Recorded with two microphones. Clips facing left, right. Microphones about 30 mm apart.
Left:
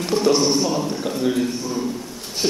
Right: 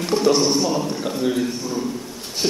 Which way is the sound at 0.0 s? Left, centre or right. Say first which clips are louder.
Even; centre.